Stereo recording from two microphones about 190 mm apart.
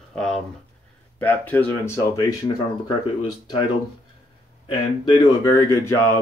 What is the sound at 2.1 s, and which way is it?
Speech, 25° left (ahead or behind).